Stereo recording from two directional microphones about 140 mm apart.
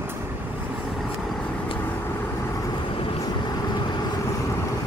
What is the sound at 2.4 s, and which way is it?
Vehicle, 20° left (ahead or behind).